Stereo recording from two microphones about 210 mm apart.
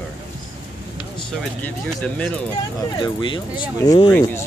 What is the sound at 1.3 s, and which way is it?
Speech, 5° left (ahead or behind).